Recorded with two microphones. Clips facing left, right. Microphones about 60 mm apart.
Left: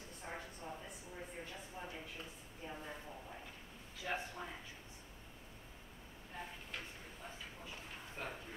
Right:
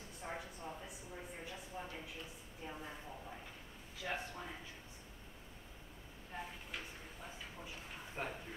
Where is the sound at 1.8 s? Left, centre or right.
Centre.